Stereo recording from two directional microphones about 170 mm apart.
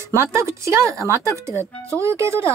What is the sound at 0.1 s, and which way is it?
Speech, 15° right (ahead or behind).